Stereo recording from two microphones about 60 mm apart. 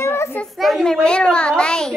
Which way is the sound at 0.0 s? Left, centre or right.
Left.